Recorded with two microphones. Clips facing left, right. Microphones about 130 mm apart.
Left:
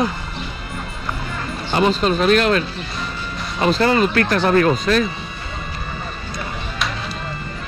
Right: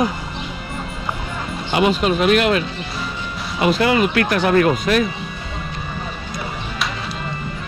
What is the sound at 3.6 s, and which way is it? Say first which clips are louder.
Speech: even; 35° left (ahead or behind).